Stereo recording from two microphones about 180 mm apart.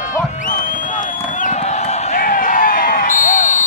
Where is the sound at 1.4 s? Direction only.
40° left (ahead or behind).